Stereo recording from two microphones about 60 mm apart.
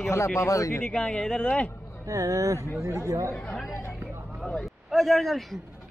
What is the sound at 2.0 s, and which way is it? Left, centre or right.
Speech, right.